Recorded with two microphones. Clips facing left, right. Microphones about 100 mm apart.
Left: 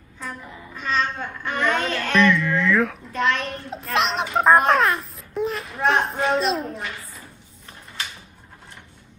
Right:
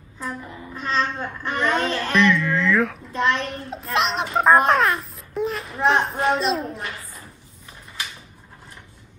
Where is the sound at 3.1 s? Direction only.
25° right (ahead or behind).